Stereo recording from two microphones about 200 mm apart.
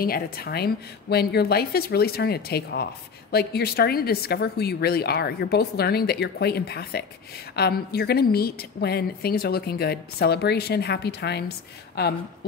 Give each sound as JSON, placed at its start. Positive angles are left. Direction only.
{"t": 0.0, "sound": "a woman's voice", "side_deg": 50}